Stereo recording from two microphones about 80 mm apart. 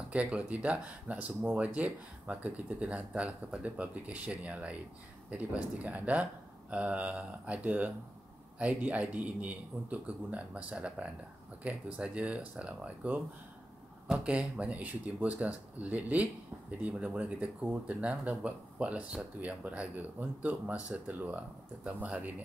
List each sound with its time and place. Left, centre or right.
0.1 s speech: centre